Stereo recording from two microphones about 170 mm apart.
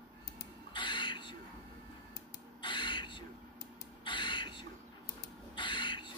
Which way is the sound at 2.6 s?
30° left (ahead or behind).